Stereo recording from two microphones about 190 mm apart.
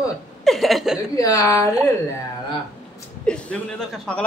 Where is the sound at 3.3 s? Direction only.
5° left (ahead or behind).